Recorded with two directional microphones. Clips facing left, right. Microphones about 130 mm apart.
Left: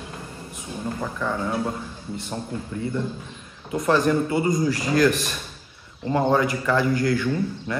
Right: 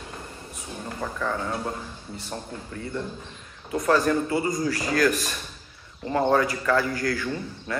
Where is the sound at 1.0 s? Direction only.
5° left (ahead or behind).